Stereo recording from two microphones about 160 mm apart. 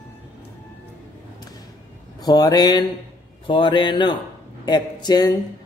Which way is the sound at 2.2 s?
25° left (ahead or behind).